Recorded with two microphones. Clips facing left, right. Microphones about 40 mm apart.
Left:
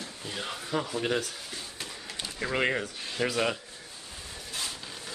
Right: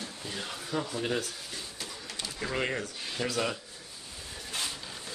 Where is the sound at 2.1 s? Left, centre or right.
Centre.